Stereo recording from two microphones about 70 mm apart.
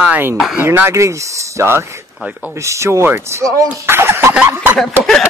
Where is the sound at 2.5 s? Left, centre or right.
Right.